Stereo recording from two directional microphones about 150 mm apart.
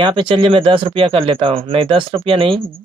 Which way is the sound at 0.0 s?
35° right (ahead or behind).